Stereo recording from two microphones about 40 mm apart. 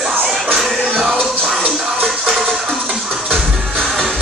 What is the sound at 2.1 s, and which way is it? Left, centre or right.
Music, centre.